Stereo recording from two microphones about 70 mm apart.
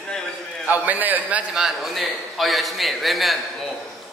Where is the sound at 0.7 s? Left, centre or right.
Right.